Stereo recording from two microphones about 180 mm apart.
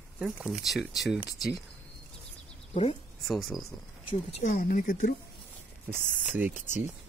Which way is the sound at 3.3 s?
Centre (ahead or behind).